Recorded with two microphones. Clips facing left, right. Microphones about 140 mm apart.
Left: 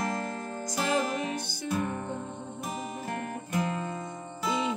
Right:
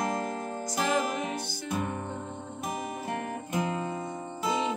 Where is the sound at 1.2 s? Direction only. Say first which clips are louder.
Even; 15° right (ahead or behind).